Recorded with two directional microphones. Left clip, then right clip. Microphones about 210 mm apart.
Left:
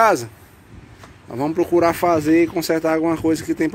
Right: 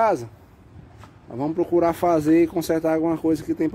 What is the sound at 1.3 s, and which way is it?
Speech, centre (ahead or behind).